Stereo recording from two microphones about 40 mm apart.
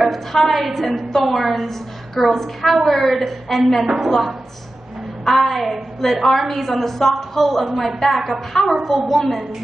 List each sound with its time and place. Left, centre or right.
0.0 s a woman's voice: centre